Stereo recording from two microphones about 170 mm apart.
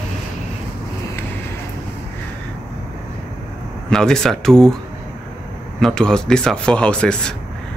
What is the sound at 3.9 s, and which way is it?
Speech, 5° left (ahead or behind).